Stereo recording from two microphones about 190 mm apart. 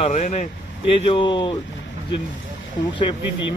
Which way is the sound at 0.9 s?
30° left (ahead or behind).